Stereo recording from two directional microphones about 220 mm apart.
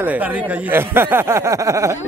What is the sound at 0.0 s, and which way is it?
A man's voice, 5° right (ahead or behind).